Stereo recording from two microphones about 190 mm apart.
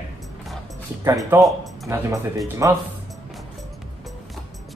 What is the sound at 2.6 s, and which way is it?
Speech, 15° right (ahead or behind).